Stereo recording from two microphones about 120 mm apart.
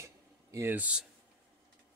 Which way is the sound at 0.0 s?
25° right (ahead or behind).